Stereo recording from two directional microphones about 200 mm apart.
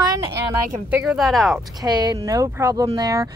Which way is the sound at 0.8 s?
5° right (ahead or behind).